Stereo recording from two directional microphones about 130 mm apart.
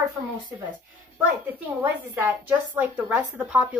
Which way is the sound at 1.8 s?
15° right (ahead or behind).